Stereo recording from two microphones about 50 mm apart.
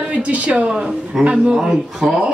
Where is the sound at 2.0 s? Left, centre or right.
Centre.